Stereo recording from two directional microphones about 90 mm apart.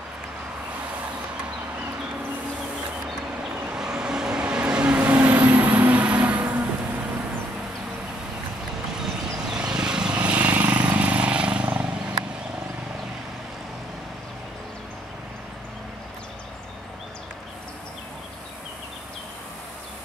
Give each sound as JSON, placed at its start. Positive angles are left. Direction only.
{"t": 3.7, "sound": "vehicle", "side_deg": -10}
{"t": 9.0, "sound": "vehicle", "side_deg": -10}